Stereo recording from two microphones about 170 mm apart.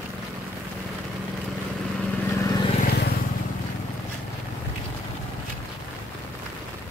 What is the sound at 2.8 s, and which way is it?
Vehicle, 65° left (ahead or behind).